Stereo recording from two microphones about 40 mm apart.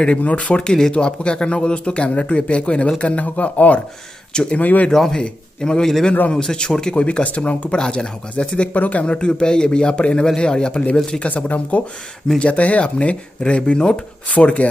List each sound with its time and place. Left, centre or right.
0.2 s speech: left
0.7 s speech: centre
0.9 s speech: left
4.3 s a man's voice: centre
4.6 s speech: left
5.1 s a man's voice: centre
7.0 s speech: left
7.7 s speech: left
8.7 s speech: left
11.2 s speech: left
14.3 s speech: left